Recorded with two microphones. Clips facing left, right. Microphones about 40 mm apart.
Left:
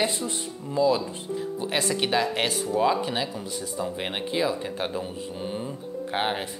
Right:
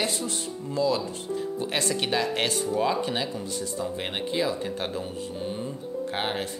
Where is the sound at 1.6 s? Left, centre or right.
Centre.